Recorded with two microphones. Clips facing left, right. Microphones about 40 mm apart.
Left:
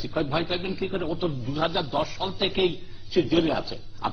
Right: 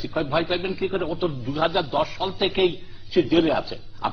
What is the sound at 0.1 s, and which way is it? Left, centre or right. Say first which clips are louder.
A man's voice: right 3 dB; centre.